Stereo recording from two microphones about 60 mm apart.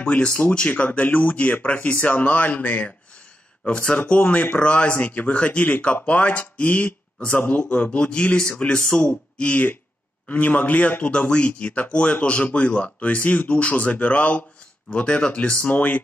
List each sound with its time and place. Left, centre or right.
0.0 s a man's voice: centre